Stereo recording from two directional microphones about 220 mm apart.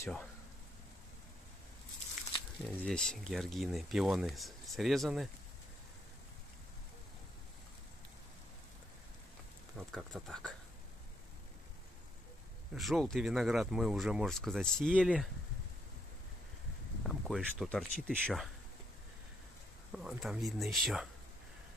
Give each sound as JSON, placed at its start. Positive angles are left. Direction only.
{"t": 0.0, "sound": "speech", "side_deg": 5}
{"t": 2.3, "sound": "a sound", "side_deg": 30}
{"t": 2.7, "sound": "speech", "side_deg": 5}
{"t": 9.9, "sound": "speech", "side_deg": 0}
{"t": 12.7, "sound": "speech", "side_deg": 0}
{"t": 17.1, "sound": "speech", "side_deg": 0}
{"t": 19.9, "sound": "speech", "side_deg": 0}